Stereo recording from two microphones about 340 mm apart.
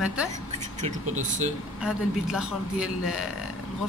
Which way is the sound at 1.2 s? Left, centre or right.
Right.